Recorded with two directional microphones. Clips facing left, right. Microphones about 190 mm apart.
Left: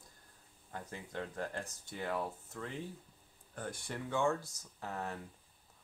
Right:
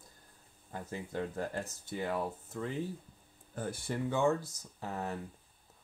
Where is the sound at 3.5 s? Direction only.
5° right (ahead or behind).